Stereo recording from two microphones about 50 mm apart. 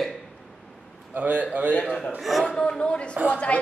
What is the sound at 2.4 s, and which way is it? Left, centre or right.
A woman's voice, centre.